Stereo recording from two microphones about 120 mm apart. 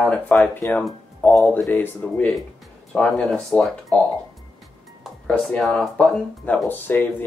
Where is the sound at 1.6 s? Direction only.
15° left (ahead or behind).